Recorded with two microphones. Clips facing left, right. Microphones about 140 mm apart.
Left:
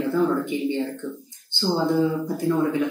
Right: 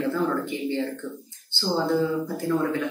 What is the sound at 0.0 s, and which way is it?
Speech, 15° left (ahead or behind).